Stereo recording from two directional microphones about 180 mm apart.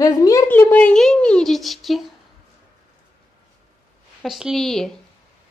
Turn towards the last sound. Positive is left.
turn(degrees=0)  # may be behind; listen again after turning